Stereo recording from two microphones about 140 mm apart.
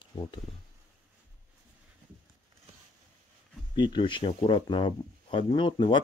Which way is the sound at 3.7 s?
35° left (ahead or behind).